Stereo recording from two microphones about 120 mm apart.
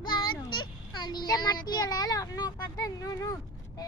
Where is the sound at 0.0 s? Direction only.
40° left (ahead or behind).